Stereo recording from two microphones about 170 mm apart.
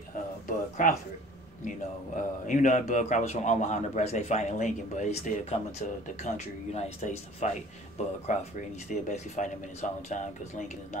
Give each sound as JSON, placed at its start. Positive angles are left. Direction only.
{"t": 0.5, "sound": "speech", "side_deg": 50}
{"t": 2.1, "sound": "speech", "side_deg": 50}